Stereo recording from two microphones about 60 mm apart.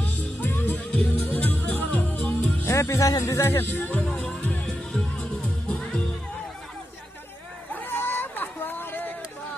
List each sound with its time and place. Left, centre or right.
0.5 s music: left
2.7 s music: left
3.1 s speech: left
3.5 s speech: left
4.1 s music: left
4.9 s music: centre
7.7 s a sound: left